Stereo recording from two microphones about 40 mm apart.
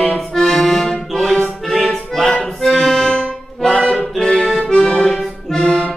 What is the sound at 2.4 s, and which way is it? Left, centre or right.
Accordion, centre.